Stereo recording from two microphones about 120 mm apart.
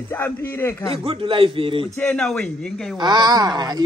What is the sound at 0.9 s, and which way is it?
Speech, 50° right (ahead or behind).